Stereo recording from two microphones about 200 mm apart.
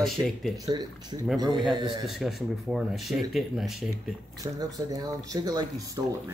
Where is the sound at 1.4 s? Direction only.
20° right (ahead or behind).